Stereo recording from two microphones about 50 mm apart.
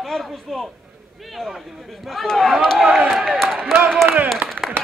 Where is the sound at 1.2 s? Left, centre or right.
Centre.